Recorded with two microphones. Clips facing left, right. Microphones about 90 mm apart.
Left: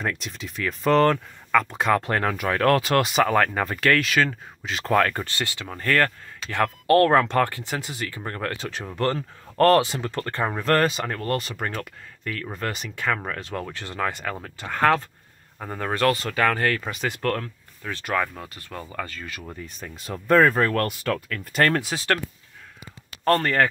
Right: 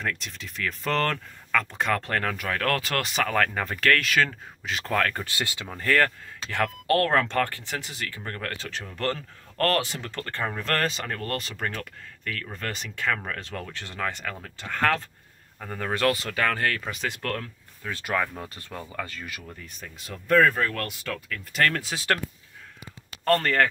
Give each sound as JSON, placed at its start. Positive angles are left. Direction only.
{"t": 0.0, "sound": "speech", "side_deg": 15}
{"t": 5.2, "sound": "speech", "side_deg": -15}
{"t": 5.7, "sound": "speech", "side_deg": 0}
{"t": 15.9, "sound": "speech", "side_deg": -5}
{"t": 19.4, "sound": "speech", "side_deg": 35}
{"t": 21.5, "sound": "speech", "side_deg": 40}
{"t": 21.9, "sound": "speech", "side_deg": -5}
{"t": 23.2, "sound": "speech", "side_deg": 10}